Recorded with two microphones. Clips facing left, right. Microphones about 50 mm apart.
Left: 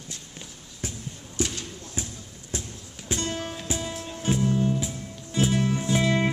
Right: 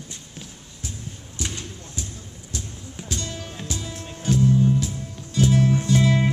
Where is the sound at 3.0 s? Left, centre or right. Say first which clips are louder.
Left 4 dB; left.